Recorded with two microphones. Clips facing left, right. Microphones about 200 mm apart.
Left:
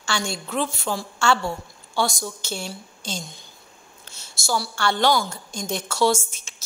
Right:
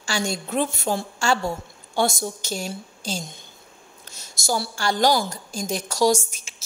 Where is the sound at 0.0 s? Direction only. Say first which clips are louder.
Right 2 dB; 40° right (ahead or behind).